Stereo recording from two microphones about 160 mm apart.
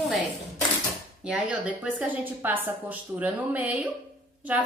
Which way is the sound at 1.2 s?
10° right (ahead or behind).